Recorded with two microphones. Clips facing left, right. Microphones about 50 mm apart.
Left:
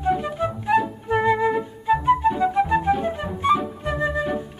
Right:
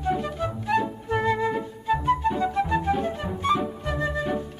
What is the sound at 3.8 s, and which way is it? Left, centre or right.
Flute, centre.